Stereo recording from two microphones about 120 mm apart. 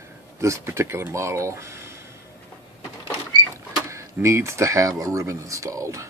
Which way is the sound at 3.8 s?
25° right (ahead or behind).